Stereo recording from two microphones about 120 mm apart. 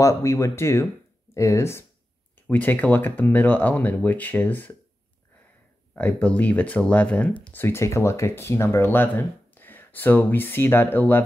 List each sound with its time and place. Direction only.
0.0 s speech: 25° left (ahead or behind)
5.9 s speech: 10° left (ahead or behind)